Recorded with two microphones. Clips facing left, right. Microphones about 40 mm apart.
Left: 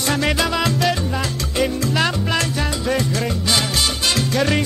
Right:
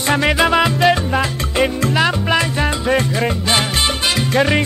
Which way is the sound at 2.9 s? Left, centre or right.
Right.